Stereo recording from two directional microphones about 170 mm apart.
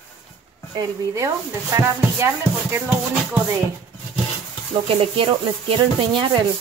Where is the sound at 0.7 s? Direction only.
20° right (ahead or behind).